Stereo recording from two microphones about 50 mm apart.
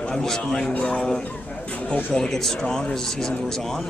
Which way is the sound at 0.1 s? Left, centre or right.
Centre.